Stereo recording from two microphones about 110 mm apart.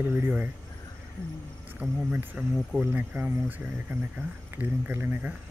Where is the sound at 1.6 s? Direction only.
15° right (ahead or behind).